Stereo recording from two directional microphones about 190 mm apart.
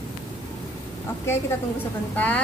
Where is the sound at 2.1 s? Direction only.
10° left (ahead or behind).